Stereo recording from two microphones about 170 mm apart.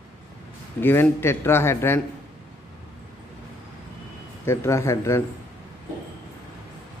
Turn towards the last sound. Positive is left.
turn(degrees=15)  # may be behind; listen again after turning